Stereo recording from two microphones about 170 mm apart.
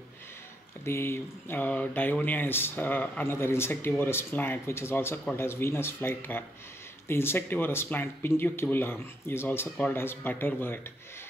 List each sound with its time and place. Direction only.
0.8 s speech: 15° left (ahead or behind)